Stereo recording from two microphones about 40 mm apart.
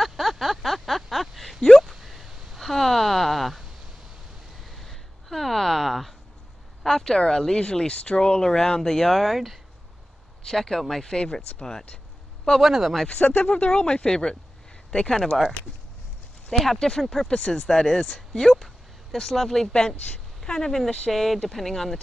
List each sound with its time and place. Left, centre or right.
0.0 s a sound: centre
2.0 s a sound: centre
2.6 s a sound: centre
4.6 s a sound: centre
6.8 s speech: centre
7.6 s speech: left
12.5 s speech: centre
13.1 s speech: left
16.7 s speech: centre
17.3 s speech: left
17.6 s speech: centre
20.1 s a woman's voice: centre
21.1 s speech: centre